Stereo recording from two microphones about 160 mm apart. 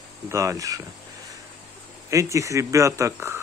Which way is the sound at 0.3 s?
20° right (ahead or behind).